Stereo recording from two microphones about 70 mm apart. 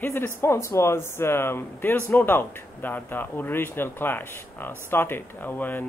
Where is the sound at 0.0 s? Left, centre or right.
Left.